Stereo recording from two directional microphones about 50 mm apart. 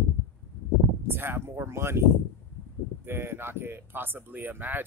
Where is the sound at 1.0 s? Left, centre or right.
Right.